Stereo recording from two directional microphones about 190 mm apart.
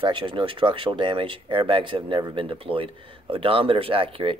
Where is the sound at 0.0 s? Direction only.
25° right (ahead or behind).